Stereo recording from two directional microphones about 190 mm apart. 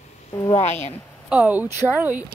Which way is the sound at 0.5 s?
35° left (ahead or behind).